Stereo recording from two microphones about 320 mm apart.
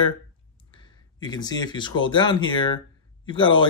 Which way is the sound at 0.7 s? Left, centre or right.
Centre.